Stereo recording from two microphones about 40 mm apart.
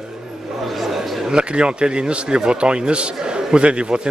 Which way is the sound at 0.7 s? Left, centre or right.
Centre.